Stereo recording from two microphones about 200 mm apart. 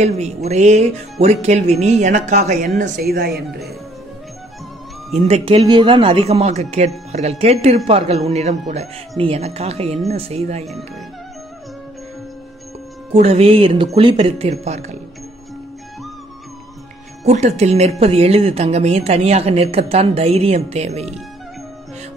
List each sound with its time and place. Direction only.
0.0 s speech: 35° right (ahead or behind)
3.1 s speech: 50° right (ahead or behind)
5.1 s speech: 30° right (ahead or behind)
13.1 s speech: 30° right (ahead or behind)
17.2 s speech: 35° right (ahead or behind)